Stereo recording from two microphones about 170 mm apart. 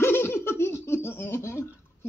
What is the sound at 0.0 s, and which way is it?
Laughter, 15° left (ahead or behind).